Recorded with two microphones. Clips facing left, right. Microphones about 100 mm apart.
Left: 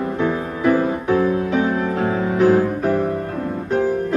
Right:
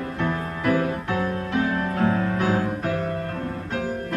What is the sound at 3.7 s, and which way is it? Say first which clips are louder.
Music: left 11 dB; 25° left (ahead or behind).